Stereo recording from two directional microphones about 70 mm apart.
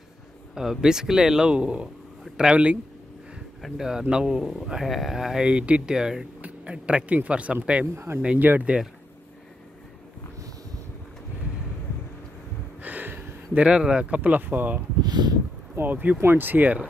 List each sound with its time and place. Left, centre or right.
0.6 s speech: centre
3.6 s speech: centre
7.9 s speech: right
8.2 s speech: centre
12.8 s a sound: right
13.7 s speech: centre
15.0 s a sound: right
15.7 s speech: right